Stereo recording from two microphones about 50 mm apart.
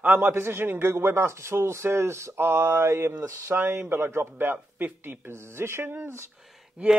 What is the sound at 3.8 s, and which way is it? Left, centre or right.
A man's voice, right.